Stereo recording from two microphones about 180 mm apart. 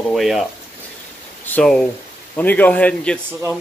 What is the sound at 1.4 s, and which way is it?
A man's voice, 5° left (ahead or behind).